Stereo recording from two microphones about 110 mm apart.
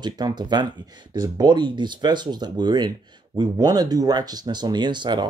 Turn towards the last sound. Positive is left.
turn(degrees=-45)  # may be behind; listen again after turning